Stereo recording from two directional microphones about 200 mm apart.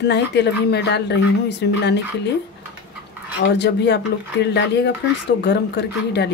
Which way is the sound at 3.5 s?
60° left (ahead or behind).